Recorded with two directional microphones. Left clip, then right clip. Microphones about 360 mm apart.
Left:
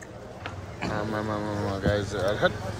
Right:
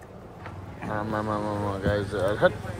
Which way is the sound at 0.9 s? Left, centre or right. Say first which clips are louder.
Right 2 dB; centre.